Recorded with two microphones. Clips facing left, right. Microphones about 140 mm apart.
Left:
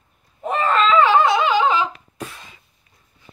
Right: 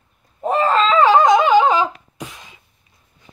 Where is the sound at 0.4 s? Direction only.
35° right (ahead or behind).